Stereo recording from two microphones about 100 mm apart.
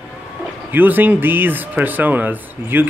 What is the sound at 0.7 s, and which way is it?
Speech, 20° right (ahead or behind).